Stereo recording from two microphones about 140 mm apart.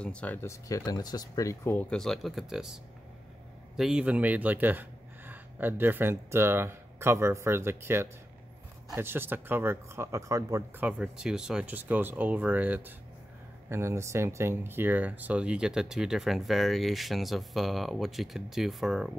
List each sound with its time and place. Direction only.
0.0 s speech: 10° left (ahead or behind); by 10.9 s 25° right (ahead or behind)
10.9 s speech: 5° right (ahead or behind)